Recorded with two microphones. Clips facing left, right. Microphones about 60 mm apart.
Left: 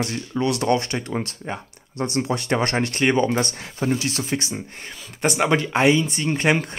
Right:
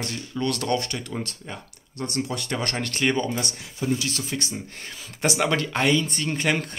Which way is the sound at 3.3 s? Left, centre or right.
Left.